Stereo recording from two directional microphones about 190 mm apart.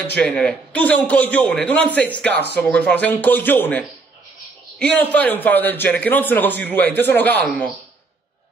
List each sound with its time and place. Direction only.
0.0 s a man's voice: 5° left (ahead or behind)